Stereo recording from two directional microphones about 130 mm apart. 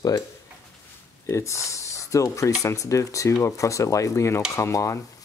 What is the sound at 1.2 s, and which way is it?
Speech, 20° left (ahead or behind).